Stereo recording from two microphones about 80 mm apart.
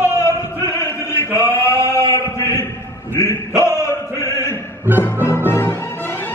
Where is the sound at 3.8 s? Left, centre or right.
Left.